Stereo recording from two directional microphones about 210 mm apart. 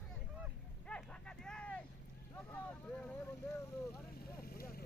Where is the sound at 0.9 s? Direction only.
5° left (ahead or behind).